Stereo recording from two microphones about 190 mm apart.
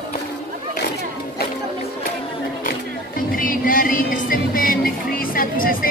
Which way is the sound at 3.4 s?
45° left (ahead or behind).